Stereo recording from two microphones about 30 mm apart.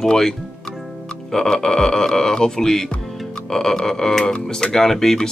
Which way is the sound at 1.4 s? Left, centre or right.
Left.